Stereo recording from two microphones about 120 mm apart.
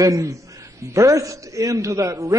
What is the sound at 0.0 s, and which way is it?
A man's voice, 25° right (ahead or behind).